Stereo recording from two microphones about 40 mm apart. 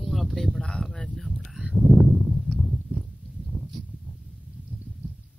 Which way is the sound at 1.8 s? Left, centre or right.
Centre.